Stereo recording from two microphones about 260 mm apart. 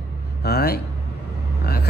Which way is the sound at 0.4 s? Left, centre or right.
Left.